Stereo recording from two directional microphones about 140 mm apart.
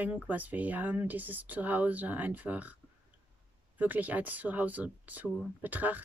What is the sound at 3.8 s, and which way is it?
Speech, 10° right (ahead or behind).